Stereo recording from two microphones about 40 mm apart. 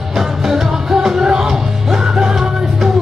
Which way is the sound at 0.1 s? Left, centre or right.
Centre.